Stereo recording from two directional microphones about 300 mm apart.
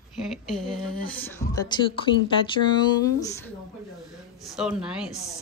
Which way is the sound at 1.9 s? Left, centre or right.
Centre.